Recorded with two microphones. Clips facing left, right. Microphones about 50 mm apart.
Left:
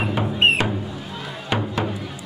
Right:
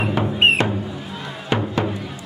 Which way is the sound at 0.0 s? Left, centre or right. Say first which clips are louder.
Right 2 dB; centre.